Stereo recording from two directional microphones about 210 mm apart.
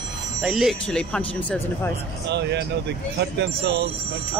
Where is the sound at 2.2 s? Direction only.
55° right (ahead or behind).